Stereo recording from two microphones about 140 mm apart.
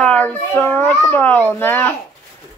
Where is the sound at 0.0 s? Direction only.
10° left (ahead or behind).